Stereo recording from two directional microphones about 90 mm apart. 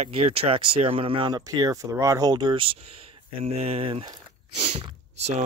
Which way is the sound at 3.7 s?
90° right.